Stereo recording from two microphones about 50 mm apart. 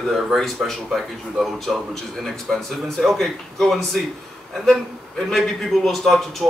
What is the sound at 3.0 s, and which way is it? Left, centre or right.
Speech, centre.